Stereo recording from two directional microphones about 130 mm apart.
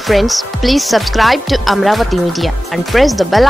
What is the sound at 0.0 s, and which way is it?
Speech, centre (ahead or behind).